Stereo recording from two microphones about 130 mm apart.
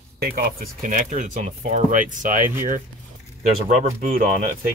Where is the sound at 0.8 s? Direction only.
85° right.